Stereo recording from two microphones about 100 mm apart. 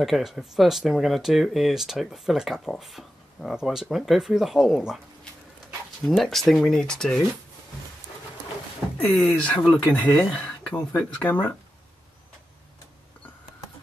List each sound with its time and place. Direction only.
0.0 s speech: centre (ahead or behind)
6.0 s speech: 5° left (ahead or behind)
9.2 s speech: 15° left (ahead or behind)